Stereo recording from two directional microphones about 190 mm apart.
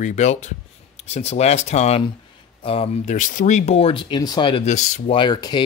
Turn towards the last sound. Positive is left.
turn(degrees=20)  # may be behind; listen again after turning